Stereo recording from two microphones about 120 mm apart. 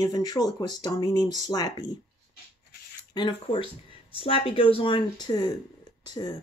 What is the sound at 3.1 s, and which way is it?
Speech, 40° left (ahead or behind).